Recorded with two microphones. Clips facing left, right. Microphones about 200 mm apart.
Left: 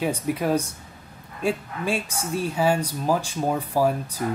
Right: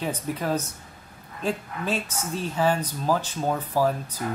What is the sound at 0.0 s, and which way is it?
Speech, 10° left (ahead or behind).